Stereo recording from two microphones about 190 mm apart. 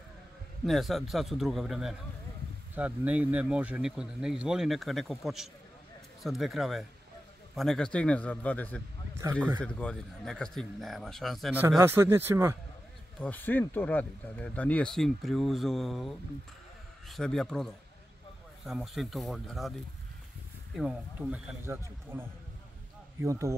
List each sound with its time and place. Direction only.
0.7 s speech: centre (ahead or behind)
9.2 s speech: 15° right (ahead or behind)
9.6 s speech: 5° left (ahead or behind)
11.5 s speech: 10° right (ahead or behind)
13.2 s speech: 10° left (ahead or behind)
20.7 s speech: 5° right (ahead or behind)